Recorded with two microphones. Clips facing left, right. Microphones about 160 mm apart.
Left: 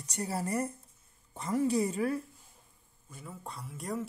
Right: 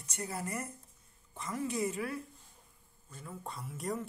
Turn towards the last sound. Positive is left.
turn(degrees=0)  # may be behind; listen again after turning